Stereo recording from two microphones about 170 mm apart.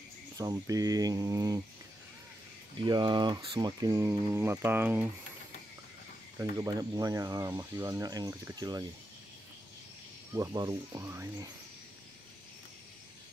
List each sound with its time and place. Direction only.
0.4 s speech: 20° right (ahead or behind)
2.8 s speech: 30° right (ahead or behind); by 5.0 s 10° right (ahead or behind)
6.3 s speech: 20° right (ahead or behind)
10.3 s speech: 20° right (ahead or behind)